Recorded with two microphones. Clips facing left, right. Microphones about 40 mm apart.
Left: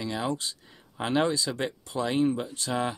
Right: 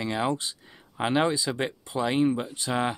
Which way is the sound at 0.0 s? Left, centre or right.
Right.